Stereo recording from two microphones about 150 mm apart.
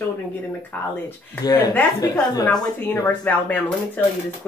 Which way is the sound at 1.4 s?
25° left (ahead or behind).